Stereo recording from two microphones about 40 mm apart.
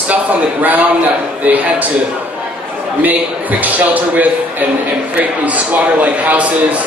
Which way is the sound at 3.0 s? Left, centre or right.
Right.